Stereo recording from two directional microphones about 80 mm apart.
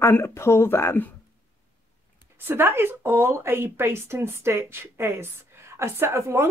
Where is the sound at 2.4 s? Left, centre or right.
Right.